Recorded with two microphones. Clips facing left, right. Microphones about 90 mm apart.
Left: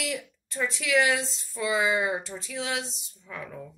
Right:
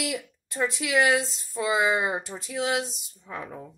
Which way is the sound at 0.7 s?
15° right (ahead or behind).